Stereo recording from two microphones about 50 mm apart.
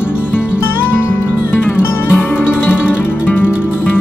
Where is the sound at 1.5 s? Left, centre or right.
Left.